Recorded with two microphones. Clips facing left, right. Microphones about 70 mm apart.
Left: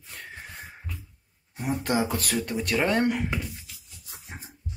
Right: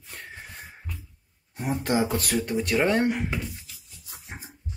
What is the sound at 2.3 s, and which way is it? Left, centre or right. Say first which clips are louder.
Speech: right 2 dB; centre.